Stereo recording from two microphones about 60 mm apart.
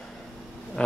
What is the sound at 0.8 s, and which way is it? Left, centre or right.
Speech, centre.